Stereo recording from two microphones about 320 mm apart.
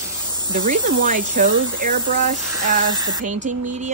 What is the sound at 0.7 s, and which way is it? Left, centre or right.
Speech, right.